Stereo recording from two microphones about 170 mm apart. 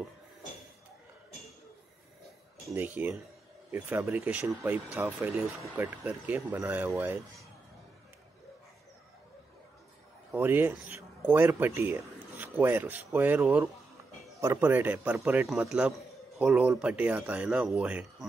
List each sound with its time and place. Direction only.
3.0 s speech: 10° right (ahead or behind)
10.3 s speech: 10° right (ahead or behind)